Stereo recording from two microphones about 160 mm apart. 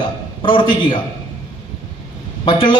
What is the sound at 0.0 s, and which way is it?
Speech, 30° left (ahead or behind).